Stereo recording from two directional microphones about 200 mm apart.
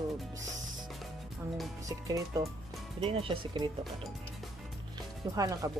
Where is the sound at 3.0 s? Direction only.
30° right (ahead or behind).